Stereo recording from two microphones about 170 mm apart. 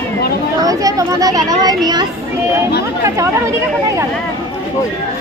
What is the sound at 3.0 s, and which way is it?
Speech, 20° right (ahead or behind).